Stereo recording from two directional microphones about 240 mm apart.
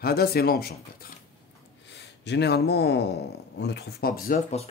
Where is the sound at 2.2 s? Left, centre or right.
Left.